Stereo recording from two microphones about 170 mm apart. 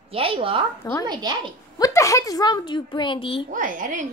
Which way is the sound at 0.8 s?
15° left (ahead or behind).